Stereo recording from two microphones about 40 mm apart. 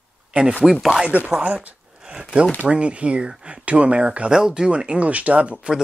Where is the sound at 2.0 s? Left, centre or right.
Right.